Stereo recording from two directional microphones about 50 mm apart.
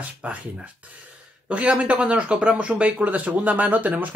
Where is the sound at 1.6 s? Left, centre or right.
Right.